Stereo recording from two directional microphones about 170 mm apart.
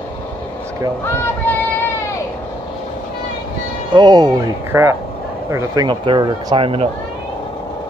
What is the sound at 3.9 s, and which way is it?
Speech, 25° right (ahead or behind).